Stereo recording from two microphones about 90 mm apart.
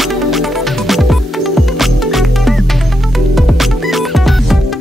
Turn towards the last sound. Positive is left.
turn(degrees=0)  # may be behind; listen again after turning